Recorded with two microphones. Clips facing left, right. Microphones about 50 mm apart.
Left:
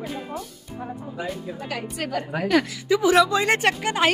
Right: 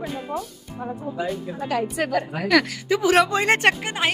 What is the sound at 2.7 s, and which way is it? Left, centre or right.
A woman's voice, right.